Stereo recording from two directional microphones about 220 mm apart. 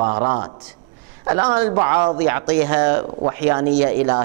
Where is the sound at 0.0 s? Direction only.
25° right (ahead or behind).